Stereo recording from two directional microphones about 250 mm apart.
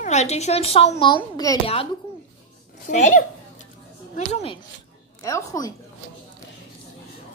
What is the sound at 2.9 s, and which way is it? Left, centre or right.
A child's voice, left.